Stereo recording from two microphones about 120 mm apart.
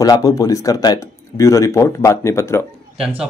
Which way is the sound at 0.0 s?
30° left (ahead or behind).